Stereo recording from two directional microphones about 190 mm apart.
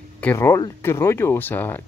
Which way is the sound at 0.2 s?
10° left (ahead or behind).